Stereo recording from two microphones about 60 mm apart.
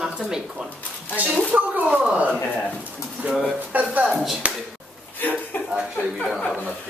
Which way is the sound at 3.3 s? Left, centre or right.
Centre.